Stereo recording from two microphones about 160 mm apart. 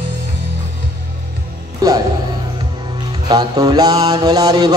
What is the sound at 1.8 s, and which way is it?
Music, 20° right (ahead or behind).